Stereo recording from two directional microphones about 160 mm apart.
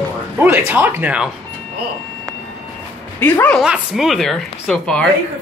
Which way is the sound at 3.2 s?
10° left (ahead or behind).